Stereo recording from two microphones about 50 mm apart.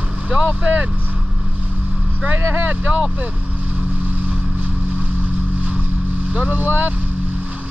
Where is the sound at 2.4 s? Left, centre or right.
Right.